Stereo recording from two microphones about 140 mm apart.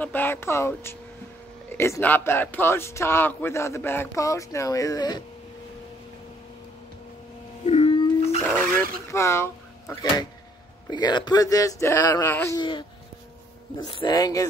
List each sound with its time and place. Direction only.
0.0 s speech: 15° left (ahead or behind); by 5.2 s 30° left (ahead or behind)
7.6 s a sound: 45° left (ahead or behind)
9.1 s speech: 20° left (ahead or behind)
12.5 s speech: 35° left (ahead or behind)